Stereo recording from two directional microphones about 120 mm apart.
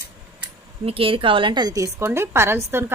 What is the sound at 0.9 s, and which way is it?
A woman's voice, 50° right (ahead or behind).